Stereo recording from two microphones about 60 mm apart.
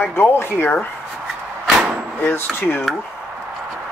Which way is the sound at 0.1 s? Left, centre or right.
Left.